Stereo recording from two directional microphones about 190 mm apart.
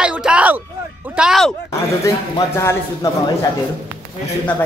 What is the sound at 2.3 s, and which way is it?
Speech, 15° left (ahead or behind).